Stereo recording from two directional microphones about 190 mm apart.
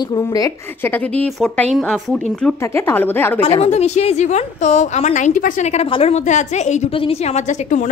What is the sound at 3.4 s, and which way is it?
A woman's voice, 30° left (ahead or behind).